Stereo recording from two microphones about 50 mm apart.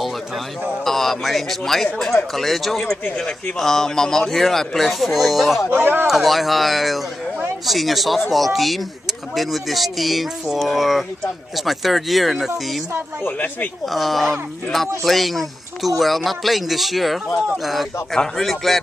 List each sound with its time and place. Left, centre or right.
0.8 s speech: centre
5.7 s speech: right
6.0 s speech: centre
13.2 s speech: left
13.8 s speech: centre
18.4 s speech: centre